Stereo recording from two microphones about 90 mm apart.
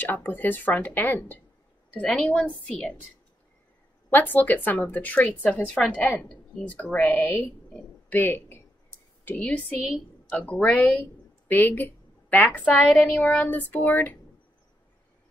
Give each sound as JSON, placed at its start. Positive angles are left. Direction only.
{"t": 0.0, "sound": "a woman's voice", "side_deg": 20}
{"t": 4.1, "sound": "a woman's voice", "side_deg": 20}